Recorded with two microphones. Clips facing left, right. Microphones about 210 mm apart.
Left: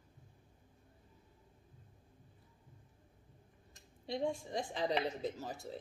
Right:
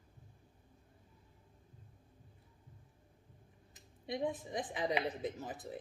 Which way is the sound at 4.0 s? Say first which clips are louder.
Even; 20° right (ahead or behind).